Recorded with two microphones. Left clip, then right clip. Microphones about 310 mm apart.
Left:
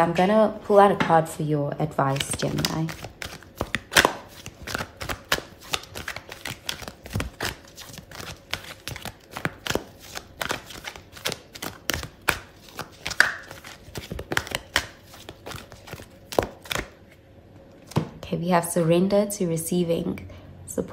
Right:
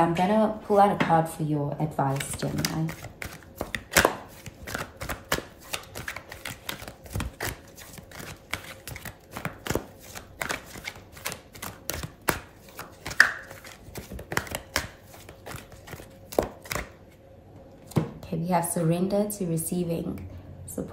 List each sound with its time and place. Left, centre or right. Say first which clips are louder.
0.0 s speech: left 4 dB; left
2.1 s a sound: left 5 dB; centre
4.6 s shuffling cards: left 3 dB; centre
18.2 s speech: left 5 dB; centre